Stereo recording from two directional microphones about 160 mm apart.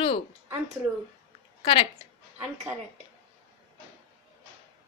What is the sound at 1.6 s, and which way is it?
Speech, 35° left (ahead or behind).